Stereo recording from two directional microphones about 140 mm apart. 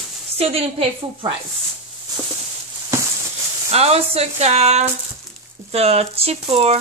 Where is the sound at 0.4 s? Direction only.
45° right (ahead or behind).